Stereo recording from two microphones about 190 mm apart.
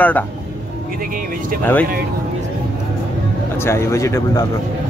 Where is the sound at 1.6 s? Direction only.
10° left (ahead or behind).